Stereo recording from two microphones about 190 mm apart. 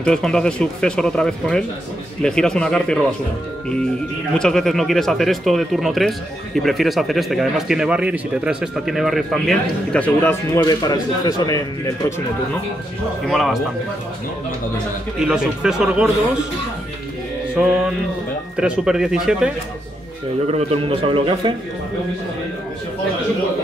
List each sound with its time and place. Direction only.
0.0 s speech: 5° left (ahead or behind)
4.4 s speech: centre (ahead or behind); by 11.6 s 20° left (ahead or behind)
13.3 s speech: centre (ahead or behind)
15.1 s speech: 5° right (ahead or behind)
18.6 s speech: 5° right (ahead or behind)
20.4 s a man's voice: 30° right (ahead or behind)